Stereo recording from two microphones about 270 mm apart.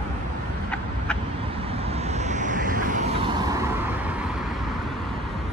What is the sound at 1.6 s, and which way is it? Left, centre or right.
Vehicle, right.